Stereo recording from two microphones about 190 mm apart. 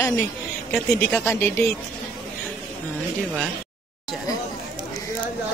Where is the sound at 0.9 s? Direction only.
15° left (ahead or behind).